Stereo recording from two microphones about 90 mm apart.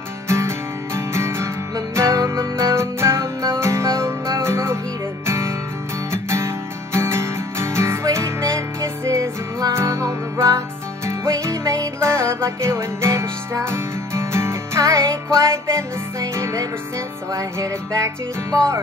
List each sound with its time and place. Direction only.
0.3 s music: 30° right (ahead or behind)